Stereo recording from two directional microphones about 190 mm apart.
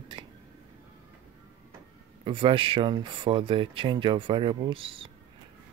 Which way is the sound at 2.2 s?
25° right (ahead or behind).